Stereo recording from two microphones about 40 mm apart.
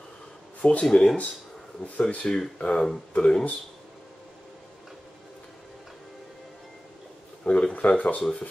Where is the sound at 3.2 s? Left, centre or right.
Centre.